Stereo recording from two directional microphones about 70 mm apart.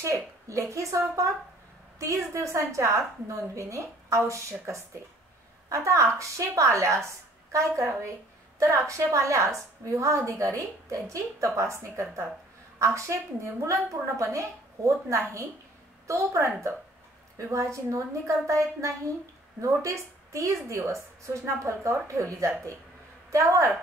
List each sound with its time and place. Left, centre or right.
0.0 s a woman's voice: right
2.3 s a woman's voice: right
6.1 s a woman's voice: right